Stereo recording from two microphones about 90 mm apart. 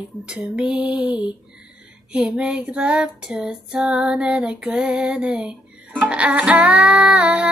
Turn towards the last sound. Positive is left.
turn(degrees=-15)  # may be behind; listen again after turning